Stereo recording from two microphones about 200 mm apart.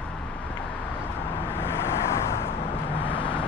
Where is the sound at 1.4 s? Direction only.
10° left (ahead or behind).